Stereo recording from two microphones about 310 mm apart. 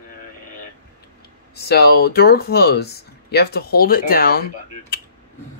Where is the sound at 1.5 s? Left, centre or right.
Left.